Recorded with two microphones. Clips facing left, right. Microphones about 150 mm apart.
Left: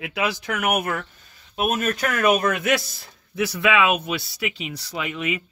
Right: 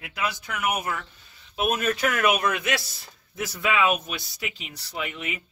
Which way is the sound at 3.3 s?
75° left (ahead or behind).